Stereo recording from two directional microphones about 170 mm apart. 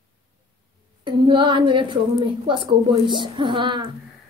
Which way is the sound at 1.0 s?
30° right (ahead or behind).